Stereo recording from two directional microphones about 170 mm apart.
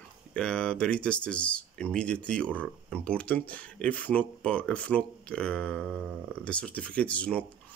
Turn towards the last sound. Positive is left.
turn(degrees=10)  # may be behind; listen again after turning